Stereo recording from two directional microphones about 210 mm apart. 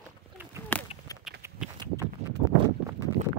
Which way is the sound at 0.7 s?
10° left (ahead or behind).